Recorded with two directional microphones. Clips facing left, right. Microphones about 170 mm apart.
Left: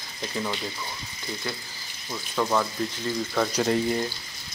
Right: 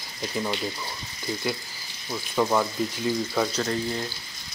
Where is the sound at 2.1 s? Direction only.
10° right (ahead or behind).